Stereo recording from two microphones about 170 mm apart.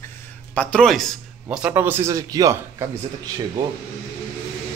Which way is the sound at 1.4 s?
10° right (ahead or behind).